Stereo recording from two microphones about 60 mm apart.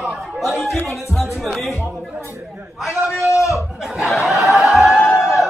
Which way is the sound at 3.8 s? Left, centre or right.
Centre.